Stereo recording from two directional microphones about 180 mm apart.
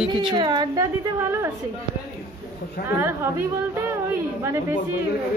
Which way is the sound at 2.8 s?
15° right (ahead or behind).